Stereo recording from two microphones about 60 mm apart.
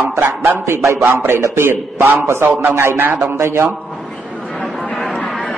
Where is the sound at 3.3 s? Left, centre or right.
Right.